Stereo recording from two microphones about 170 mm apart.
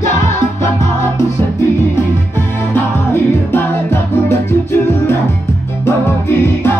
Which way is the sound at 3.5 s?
15° left (ahead or behind).